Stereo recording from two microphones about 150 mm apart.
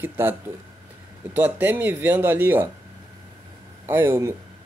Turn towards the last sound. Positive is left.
turn(degrees=-15)  # may be behind; listen again after turning